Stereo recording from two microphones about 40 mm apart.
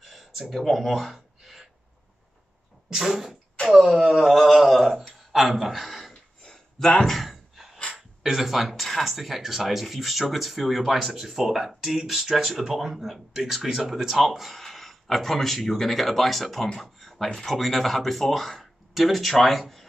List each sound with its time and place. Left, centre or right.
0.0 s speech: centre
1.1 s a sound: centre
2.9 s sneeze: centre
3.9 s speech: centre
6.4 s a sound: centre
7.0 s gasp: centre
8.2 s speech: centre